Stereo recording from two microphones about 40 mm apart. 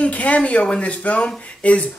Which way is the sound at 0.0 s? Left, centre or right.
Left.